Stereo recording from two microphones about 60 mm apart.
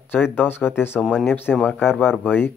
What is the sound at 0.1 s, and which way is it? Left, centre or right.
Speech, left.